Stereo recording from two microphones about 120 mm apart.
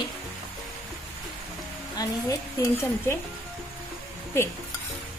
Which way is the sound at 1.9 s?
30° left (ahead or behind).